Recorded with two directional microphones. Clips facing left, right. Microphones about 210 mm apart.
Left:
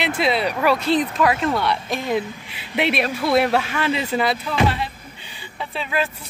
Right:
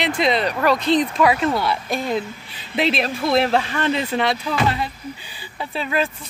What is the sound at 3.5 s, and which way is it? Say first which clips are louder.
Speech: right 1 dB; 5° left (ahead or behind).